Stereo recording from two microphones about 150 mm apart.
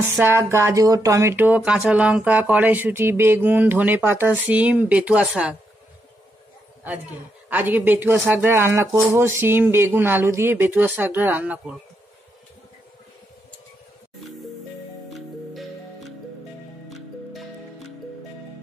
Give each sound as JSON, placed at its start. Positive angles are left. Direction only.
{"t": 0.1, "sound": "speech", "side_deg": -15}
{"t": 7.4, "sound": "speech", "side_deg": -10}
{"t": 15.0, "sound": "music", "side_deg": 0}